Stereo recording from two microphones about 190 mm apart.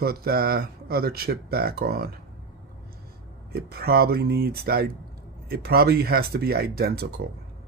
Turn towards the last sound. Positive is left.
turn(degrees=-55)  # may be behind; listen again after turning